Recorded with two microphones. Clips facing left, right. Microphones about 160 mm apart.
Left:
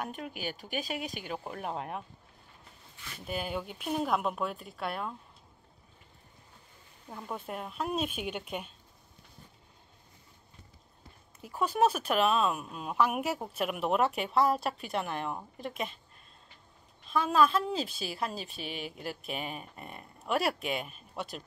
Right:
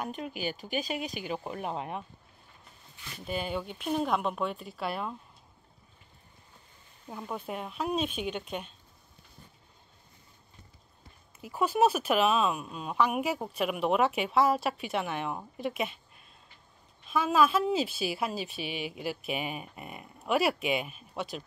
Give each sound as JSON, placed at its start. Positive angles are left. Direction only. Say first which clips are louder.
{"t": 0.0, "sound": "speech", "louder": "right 3 dB", "side_deg": 0}
{"t": 3.3, "sound": "speech", "louder": "right 2 dB", "side_deg": 5}
{"t": 7.1, "sound": "speech", "louder": "right 2 dB", "side_deg": 0}
{"t": 11.4, "sound": "speech", "louder": "right 2 dB", "side_deg": -5}
{"t": 17.1, "sound": "a woman's voice", "louder": "right 1 dB", "side_deg": -5}